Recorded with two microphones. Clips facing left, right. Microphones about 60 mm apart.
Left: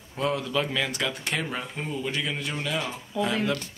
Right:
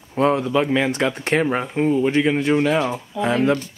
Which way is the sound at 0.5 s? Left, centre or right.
Right.